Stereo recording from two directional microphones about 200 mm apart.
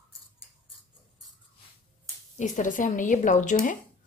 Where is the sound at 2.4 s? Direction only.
40° left (ahead or behind).